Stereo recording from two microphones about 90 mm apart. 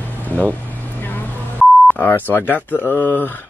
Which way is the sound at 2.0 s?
25° left (ahead or behind).